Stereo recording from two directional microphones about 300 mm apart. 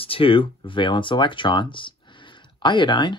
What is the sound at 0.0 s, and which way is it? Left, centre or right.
Speech, centre.